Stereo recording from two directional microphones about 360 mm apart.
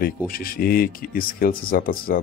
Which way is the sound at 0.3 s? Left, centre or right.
Left.